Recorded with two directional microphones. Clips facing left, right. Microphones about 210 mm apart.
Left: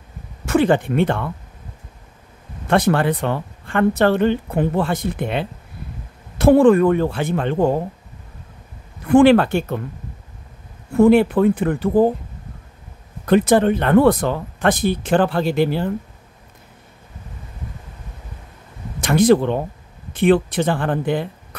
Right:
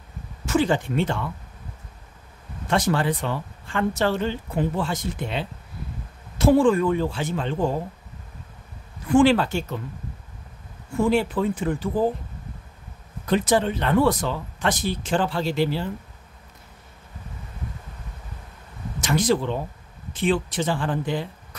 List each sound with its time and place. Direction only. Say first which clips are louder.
0.5 s speech: left 5 dB; 60° left (ahead or behind)
2.7 s speech: left 6 dB; 60° left (ahead or behind)
9.0 s speech: left 6 dB; 60° left (ahead or behind)
11.0 s speech: left 9 dB; 60° left (ahead or behind)
13.2 s speech: left 7 dB; 60° left (ahead or behind)
18.9 s speech: left 8 dB; 60° left (ahead or behind)